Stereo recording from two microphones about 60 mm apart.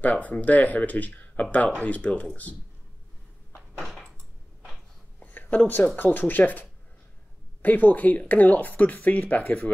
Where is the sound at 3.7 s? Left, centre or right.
Centre.